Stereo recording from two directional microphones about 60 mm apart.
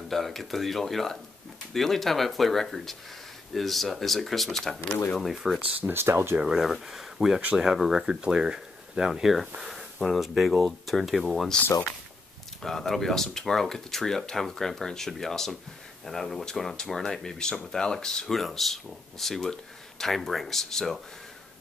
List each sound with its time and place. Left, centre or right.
0.1 s speech: centre
5.7 s speech: right
5.9 s speech: right
6.4 s speech: centre
12.6 s speech: centre